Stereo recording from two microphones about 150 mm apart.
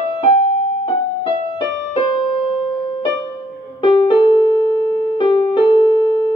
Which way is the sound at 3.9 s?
30° left (ahead or behind).